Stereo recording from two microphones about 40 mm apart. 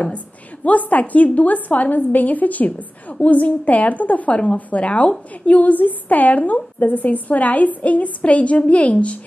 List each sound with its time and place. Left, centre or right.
0.7 s a woman's voice: left